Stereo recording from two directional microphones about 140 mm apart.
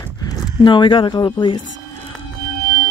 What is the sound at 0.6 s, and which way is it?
Speech, 35° left (ahead or behind).